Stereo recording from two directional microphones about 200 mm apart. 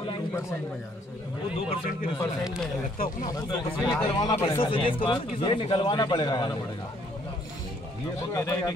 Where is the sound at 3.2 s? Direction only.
20° left (ahead or behind).